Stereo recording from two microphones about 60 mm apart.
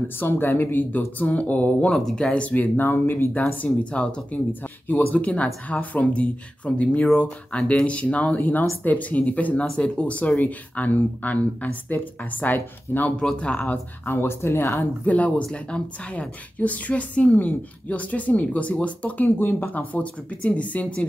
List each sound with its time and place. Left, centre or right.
0.2 s speech: left
1.9 s speech: centre
2.3 s a woman's voice: left
3.6 s a woman's voice: left
4.5 s a woman's voice: left
13.1 s speech: centre
14.0 s speech: left
15.0 s a woman's voice: left
19.7 s a woman's voice: left